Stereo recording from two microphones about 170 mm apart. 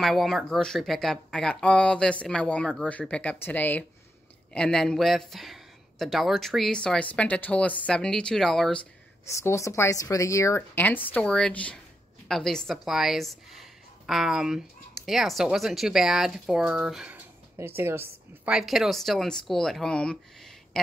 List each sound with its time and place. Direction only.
0.0 s speech: centre (ahead or behind)
9.3 s a woman's voice: 15° left (ahead or behind)
20.7 s a sound: 5° left (ahead or behind)